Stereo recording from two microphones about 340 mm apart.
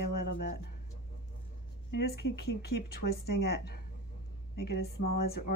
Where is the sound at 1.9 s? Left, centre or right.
Left.